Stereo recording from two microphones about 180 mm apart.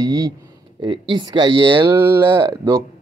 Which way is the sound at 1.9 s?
10° right (ahead or behind).